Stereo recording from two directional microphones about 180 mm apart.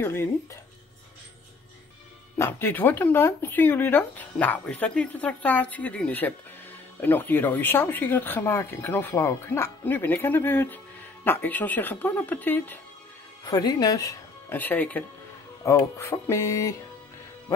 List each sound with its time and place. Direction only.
0.0 s speech: 15° left (ahead or behind)
2.3 s speech: 15° left (ahead or behind)
13.4 s speech: 20° left (ahead or behind)